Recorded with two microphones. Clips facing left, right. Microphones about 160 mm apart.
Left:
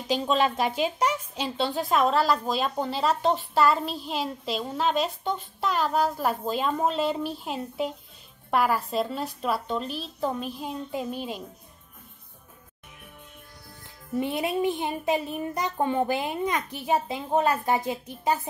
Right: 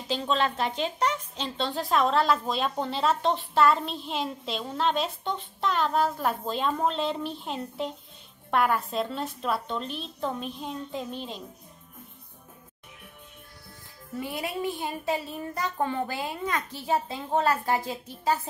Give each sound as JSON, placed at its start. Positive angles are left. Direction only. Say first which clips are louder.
{"t": 0.1, "sound": "a woman's voice", "louder": "left 3 dB", "side_deg": 10}
{"t": 14.1, "sound": "a child's voice", "louder": "left 6 dB", "side_deg": 20}